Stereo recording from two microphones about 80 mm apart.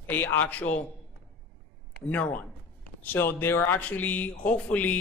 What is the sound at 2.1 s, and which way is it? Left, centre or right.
A man's voice, centre.